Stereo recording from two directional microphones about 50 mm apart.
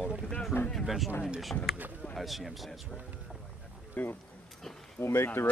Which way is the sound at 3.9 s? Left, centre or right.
Left.